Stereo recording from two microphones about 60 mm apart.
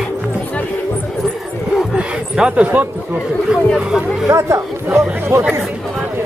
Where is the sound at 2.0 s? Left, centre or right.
Centre.